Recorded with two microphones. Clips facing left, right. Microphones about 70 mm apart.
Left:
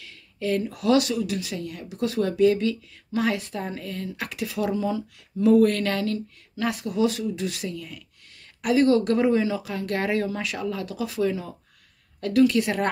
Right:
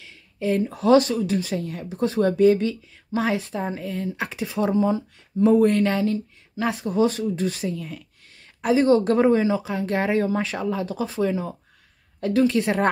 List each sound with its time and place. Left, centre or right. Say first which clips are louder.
0.0 s speech: right 3 dB; right